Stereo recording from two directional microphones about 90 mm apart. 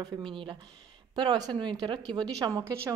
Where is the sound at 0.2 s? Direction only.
70° right (ahead or behind); by 2.6 s 45° right (ahead or behind).